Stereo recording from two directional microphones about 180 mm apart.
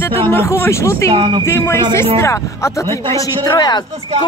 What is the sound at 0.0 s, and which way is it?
Speech, 10° left (ahead or behind).